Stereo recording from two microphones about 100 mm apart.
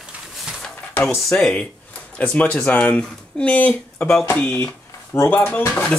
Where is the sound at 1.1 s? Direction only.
Centre (ahead or behind).